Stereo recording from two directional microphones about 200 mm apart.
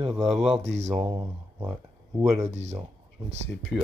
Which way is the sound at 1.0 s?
25° right (ahead or behind).